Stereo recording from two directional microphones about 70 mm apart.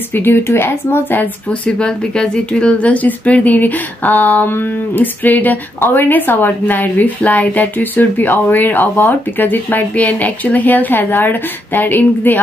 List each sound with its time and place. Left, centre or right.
0.1 s speech: left
1.7 s speech: centre